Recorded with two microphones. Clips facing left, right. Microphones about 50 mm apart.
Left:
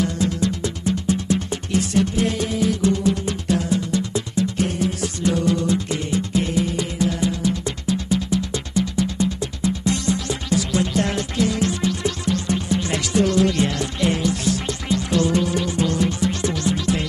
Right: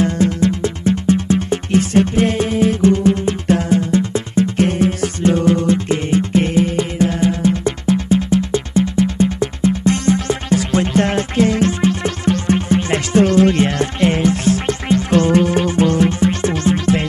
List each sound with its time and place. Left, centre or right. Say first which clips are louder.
0.0 s music: right 6 dB; right